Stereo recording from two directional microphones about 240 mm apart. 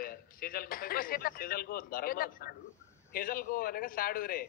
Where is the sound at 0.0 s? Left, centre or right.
Left.